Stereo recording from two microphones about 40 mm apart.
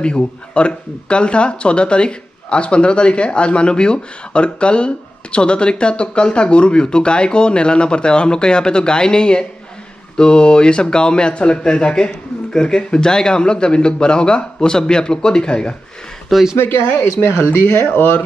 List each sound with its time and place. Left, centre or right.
0.0 s speech: left
16.5 s speech: left